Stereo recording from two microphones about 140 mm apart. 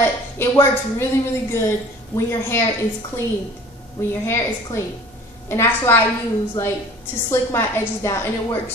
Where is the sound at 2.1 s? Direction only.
20° left (ahead or behind).